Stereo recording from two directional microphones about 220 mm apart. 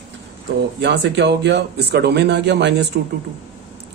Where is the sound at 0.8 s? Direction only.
50° right (ahead or behind).